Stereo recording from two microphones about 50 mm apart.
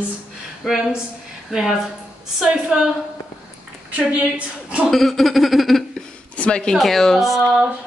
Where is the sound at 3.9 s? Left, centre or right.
Right.